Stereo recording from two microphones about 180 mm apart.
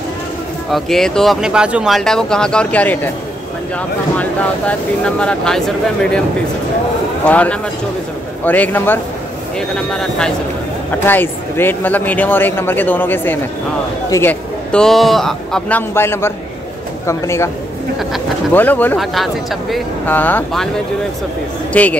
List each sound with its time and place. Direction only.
0.7 s speech: centre (ahead or behind)
4.2 s a man's voice: 5° left (ahead or behind)
7.2 s a man's voice: 10° left (ahead or behind)
15.9 s a man's voice: 15° left (ahead or behind)
18.5 s a man's voice: 10° left (ahead or behind)
20.1 s a man's voice: 10° left (ahead or behind)
21.7 s a man's voice: 10° left (ahead or behind)